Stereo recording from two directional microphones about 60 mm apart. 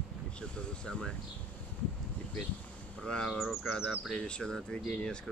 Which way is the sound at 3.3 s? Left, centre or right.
Centre.